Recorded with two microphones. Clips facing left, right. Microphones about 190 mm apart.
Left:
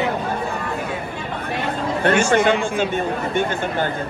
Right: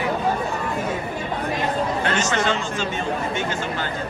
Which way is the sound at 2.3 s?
55° left (ahead or behind).